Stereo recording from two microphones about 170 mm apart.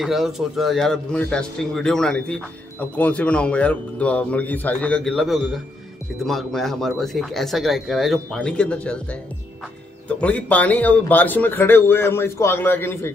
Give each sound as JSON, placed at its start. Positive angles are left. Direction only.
{"t": 0.0, "sound": "a man's voice", "side_deg": 0}
{"t": 10.0, "sound": "a man's voice", "side_deg": 10}